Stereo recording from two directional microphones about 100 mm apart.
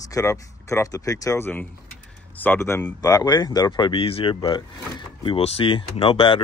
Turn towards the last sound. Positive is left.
turn(degrees=60)  # may be behind; listen again after turning